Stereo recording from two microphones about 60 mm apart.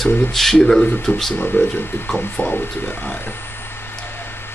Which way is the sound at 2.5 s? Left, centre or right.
Centre.